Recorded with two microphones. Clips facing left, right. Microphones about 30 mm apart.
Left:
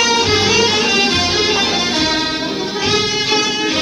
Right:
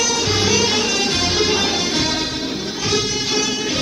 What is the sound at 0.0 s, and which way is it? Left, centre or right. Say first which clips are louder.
Music: left 5 dB; left.